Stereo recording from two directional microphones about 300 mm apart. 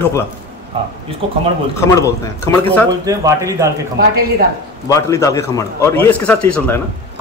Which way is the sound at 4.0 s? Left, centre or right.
Right.